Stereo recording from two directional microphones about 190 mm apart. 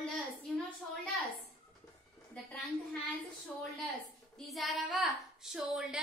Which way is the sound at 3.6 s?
Centre (ahead or behind).